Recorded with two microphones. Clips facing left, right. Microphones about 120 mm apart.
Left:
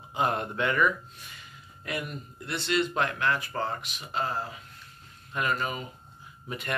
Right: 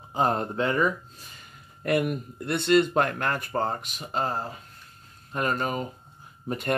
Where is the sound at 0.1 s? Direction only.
35° right (ahead or behind).